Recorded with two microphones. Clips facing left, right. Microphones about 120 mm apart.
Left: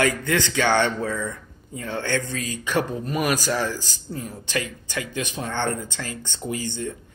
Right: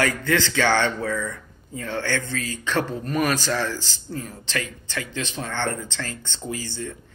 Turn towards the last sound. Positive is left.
turn(degrees=20)  # may be behind; listen again after turning